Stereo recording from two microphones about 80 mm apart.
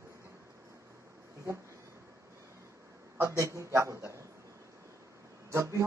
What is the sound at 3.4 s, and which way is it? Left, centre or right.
Speech, right.